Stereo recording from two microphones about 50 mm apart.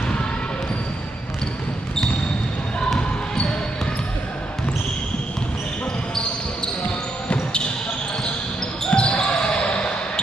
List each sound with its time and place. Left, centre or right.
8.8 s basketball bounce: left